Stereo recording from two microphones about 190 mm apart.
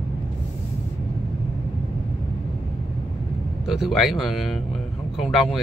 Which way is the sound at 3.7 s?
Centre (ahead or behind).